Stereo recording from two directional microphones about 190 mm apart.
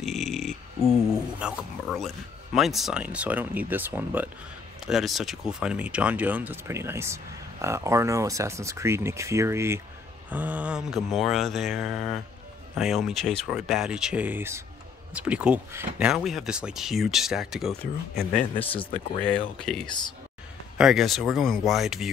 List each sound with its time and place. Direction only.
0.0 s snoring: centre (ahead or behind)
1.4 s speech: centre (ahead or behind)
18.6 s speech: 30° left (ahead or behind)
19.6 s speech: 5° left (ahead or behind)